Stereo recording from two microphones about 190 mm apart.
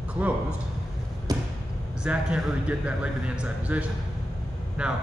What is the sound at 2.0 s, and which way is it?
A man's voice, 5° right (ahead or behind).